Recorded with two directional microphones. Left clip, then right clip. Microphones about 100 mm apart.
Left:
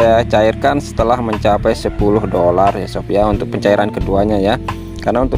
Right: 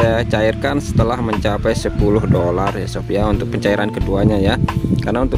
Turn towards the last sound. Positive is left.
turn(degrees=10)  # may be behind; listen again after turning